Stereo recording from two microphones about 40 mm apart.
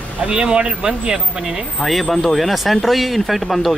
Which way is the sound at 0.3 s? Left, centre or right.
Right.